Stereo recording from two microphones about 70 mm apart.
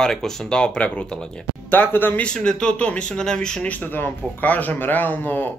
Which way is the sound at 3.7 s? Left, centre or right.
Left.